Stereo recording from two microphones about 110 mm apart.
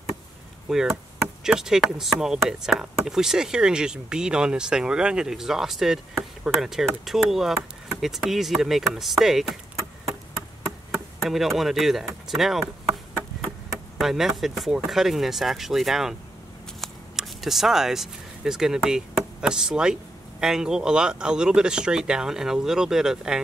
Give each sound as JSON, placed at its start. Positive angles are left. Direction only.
{"t": 0.7, "sound": "speech", "side_deg": -5}
{"t": 11.2, "sound": "speech", "side_deg": 0}
{"t": 13.9, "sound": "speech", "side_deg": -5}